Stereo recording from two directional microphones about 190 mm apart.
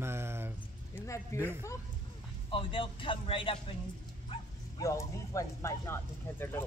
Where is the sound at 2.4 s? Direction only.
25° left (ahead or behind).